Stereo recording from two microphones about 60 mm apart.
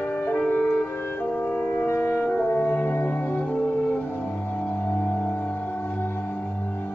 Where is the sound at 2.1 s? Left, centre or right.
Left.